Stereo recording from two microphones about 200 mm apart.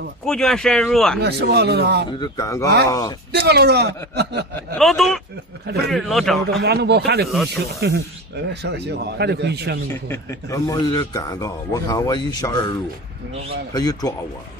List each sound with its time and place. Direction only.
0.2 s speech: centre (ahead or behind)
1.2 s a man's voice: 55° right (ahead or behind)
2.1 s speech: 20° left (ahead or behind)
3.3 s a man's voice: 55° right (ahead or behind)
4.6 s speech: centre (ahead or behind)
6.4 s a man's voice: 55° right (ahead or behind)
10.0 s a man's voice: 15° left (ahead or behind)
13.7 s speech: 20° left (ahead or behind)